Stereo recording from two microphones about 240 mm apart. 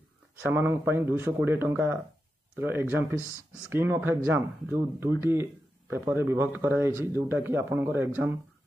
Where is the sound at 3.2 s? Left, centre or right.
Centre.